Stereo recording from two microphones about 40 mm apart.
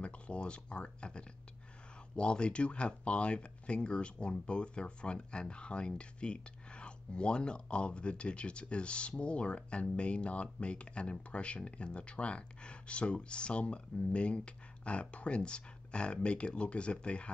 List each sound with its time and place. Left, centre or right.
0.0 s speech: left